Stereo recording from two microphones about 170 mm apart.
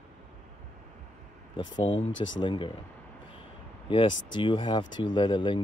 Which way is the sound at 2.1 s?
90° left.